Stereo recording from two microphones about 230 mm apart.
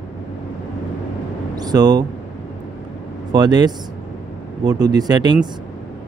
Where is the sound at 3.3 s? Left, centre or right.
Centre.